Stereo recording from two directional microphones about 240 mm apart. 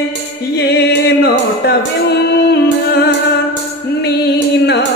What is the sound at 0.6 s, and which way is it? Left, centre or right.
Music, left.